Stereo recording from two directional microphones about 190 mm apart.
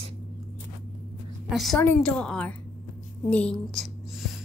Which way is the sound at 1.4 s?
Centre (ahead or behind).